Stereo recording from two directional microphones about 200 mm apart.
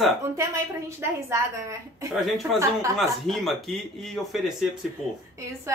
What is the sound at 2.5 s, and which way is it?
Speech, 15° right (ahead or behind).